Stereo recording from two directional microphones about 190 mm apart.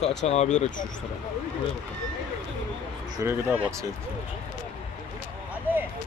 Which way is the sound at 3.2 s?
10° right (ahead or behind).